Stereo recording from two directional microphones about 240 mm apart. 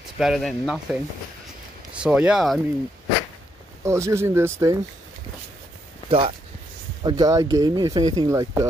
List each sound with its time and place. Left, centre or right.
0.2 s speech: centre
2.0 s speech: centre
3.8 s speech: centre
6.0 s speech: right